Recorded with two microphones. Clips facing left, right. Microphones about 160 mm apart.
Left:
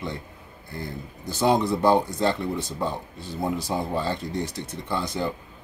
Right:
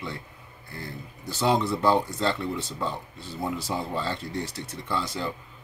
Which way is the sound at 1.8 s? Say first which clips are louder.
Left 3 dB; 15° left (ahead or behind).